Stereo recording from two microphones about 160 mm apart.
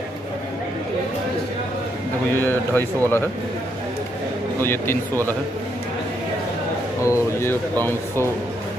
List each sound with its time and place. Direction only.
2.3 s speech: 15° left (ahead or behind)
4.6 s speech: 15° left (ahead or behind)
7.0 s speech: 15° left (ahead or behind)